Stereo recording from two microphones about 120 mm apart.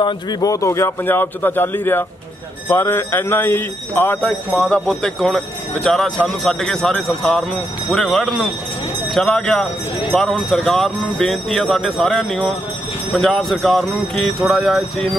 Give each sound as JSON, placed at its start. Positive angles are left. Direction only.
{"t": 0.0, "sound": "a man's voice", "side_deg": 35}
{"t": 4.6, "sound": "speech", "side_deg": 5}